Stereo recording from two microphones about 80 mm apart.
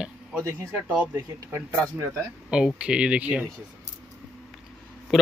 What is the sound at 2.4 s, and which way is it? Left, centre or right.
Speech, centre.